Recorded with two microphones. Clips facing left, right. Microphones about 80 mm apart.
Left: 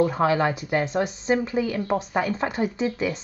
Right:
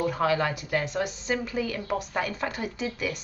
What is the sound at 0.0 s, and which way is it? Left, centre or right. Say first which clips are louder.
Speech: left 4 dB; left.